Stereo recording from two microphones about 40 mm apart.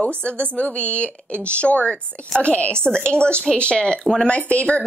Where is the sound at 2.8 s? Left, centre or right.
Left.